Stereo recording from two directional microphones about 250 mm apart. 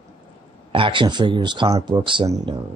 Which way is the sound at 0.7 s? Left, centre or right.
Centre.